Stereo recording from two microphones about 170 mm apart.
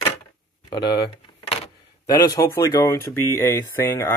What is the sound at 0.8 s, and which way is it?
Speech, 80° left.